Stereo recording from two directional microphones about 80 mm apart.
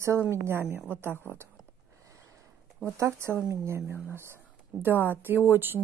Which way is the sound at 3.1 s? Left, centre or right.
Right.